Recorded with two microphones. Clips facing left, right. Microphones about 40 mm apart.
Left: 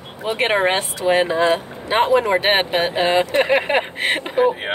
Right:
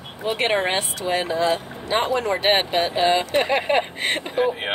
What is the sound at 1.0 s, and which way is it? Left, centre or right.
Speech, centre.